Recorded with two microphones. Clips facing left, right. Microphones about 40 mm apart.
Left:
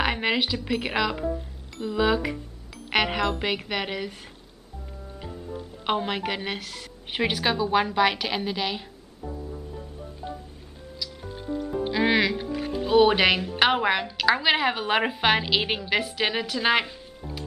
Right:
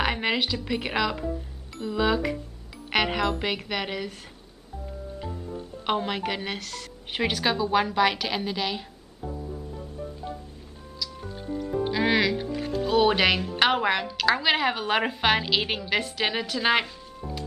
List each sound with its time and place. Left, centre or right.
0.0 s a woman's voice: centre
5.9 s a woman's voice: centre
11.6 s speech: centre